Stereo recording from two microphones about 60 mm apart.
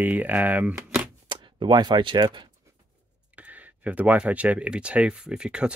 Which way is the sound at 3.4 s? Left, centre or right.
Right.